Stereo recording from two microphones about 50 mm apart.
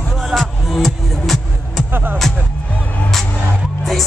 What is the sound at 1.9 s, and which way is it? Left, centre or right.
Music, right.